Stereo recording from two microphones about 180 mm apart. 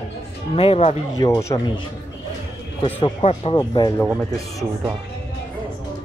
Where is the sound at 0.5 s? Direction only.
35° left (ahead or behind).